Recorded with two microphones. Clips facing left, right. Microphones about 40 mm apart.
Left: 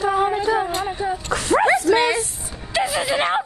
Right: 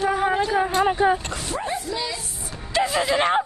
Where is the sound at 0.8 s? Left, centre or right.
Right.